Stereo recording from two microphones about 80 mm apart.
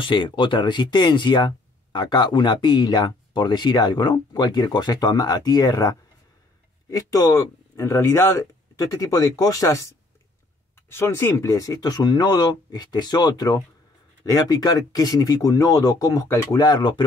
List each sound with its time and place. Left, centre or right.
0.0 s speech: left
16.6 s speech: left